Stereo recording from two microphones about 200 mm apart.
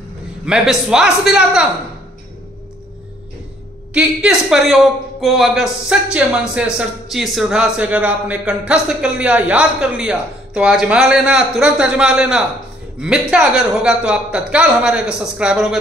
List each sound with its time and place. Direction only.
0.5 s speech: centre (ahead or behind)
3.9 s speech: 5° right (ahead or behind)